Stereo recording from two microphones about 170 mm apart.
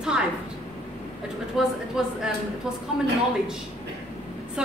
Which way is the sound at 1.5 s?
5° right (ahead or behind).